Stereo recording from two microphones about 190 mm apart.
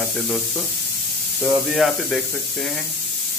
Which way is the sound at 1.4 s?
Centre (ahead or behind).